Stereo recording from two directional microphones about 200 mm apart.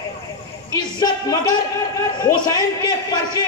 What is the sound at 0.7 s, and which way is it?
Speech, 20° left (ahead or behind).